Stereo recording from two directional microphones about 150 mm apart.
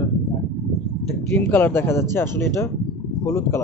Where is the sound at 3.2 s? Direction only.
15° left (ahead or behind).